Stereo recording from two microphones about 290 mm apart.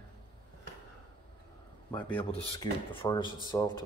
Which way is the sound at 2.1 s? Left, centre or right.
Centre.